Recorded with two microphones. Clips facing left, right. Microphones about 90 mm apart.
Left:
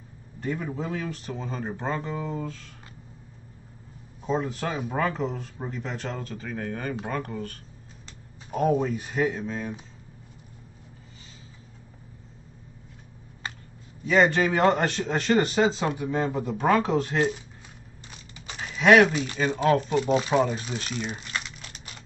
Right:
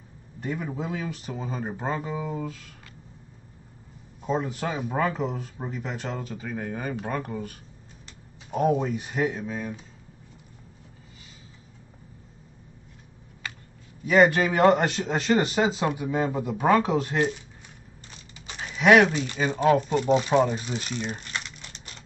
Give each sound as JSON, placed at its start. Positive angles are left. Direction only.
{"t": 0.4, "sound": "a man's voice", "side_deg": -5}
{"t": 4.2, "sound": "a man's voice", "side_deg": -5}
{"t": 13.4, "sound": "a sound", "side_deg": 35}
{"t": 14.0, "sound": "a man's voice", "side_deg": -10}
{"t": 18.5, "sound": "a sound", "side_deg": 0}
{"t": 19.3, "sound": "speech", "side_deg": -5}